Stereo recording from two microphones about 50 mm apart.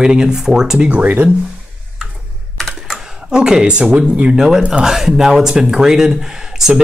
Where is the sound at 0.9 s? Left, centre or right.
Right.